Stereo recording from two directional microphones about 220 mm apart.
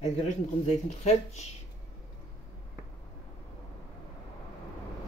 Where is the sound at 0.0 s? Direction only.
30° left (ahead or behind).